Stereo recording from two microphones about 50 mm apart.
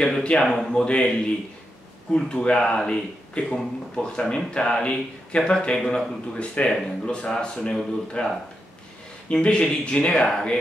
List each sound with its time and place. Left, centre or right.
0.0 s speech: centre
2.1 s speech: centre
9.3 s speech: left